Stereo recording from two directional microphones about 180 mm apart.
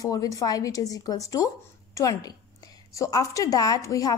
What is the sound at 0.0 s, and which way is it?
A woman's voice, 20° left (ahead or behind).